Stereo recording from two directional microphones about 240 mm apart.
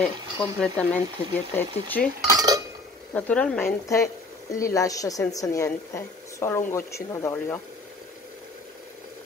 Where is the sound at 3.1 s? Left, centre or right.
Centre.